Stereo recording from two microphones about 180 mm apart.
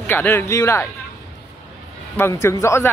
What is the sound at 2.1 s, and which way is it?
Speech, 15° left (ahead or behind).